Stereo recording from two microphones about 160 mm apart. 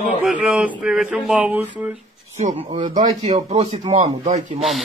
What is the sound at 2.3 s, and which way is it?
A man's voice, 45° right (ahead or behind).